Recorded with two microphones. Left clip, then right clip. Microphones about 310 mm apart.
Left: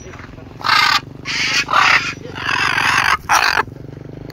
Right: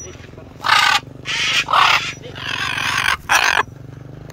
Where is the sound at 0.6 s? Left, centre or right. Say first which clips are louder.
Even; centre.